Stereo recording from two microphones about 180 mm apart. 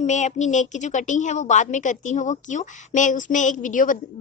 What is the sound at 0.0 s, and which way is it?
A woman's voice, 40° left (ahead or behind).